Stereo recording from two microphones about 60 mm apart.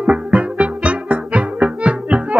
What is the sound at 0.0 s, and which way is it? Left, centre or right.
Music, centre.